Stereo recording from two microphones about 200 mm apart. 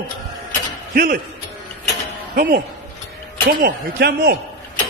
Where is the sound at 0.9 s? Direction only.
50° right (ahead or behind).